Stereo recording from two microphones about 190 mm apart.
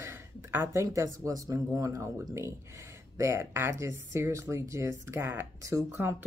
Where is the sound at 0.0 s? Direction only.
10° right (ahead or behind).